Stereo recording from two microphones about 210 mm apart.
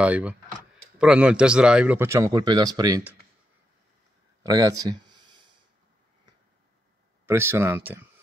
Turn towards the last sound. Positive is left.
turn(degrees=-10)  # may be behind; listen again after turning